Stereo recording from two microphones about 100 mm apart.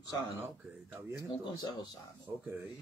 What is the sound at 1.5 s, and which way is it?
Speech, 45° left (ahead or behind).